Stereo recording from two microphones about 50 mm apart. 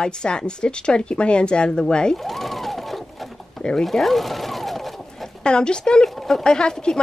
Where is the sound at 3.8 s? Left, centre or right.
Centre.